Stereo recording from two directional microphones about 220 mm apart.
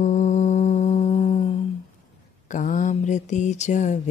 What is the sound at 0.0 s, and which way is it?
Music, 35° left (ahead or behind).